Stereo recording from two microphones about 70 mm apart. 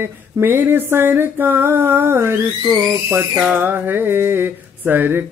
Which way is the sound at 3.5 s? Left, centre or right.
Right.